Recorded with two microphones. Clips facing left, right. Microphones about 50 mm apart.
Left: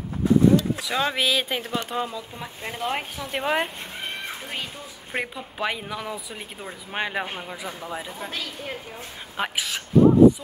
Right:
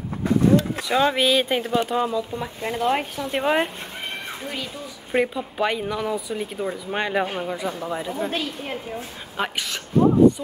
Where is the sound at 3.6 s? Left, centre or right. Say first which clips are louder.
Right 1 dB; right.